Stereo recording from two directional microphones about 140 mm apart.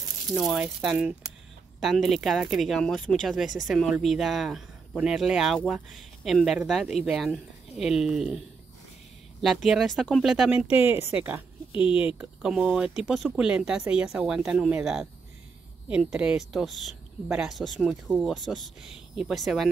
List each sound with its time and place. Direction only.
0.3 s speech: centre (ahead or behind)
11.7 s speech: 35° left (ahead or behind)
12.2 s speech: 5° right (ahead or behind)